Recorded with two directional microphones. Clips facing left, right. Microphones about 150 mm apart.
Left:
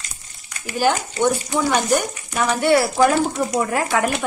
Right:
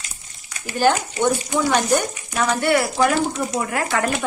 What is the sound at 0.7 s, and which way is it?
A woman's voice, 10° left (ahead or behind).